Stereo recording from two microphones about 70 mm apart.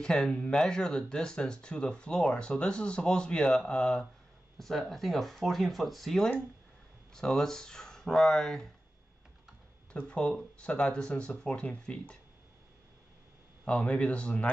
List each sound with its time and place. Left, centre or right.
0.0 s speech: centre
9.9 s speech: centre
13.7 s speech: centre